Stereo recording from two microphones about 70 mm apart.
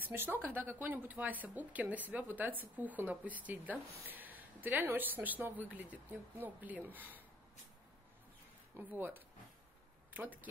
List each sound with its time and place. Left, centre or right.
0.0 s speech: right
8.7 s speech: right